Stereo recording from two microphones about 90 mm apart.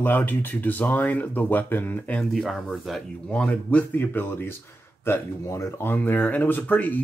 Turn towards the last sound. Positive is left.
turn(degrees=15)  # may be behind; listen again after turning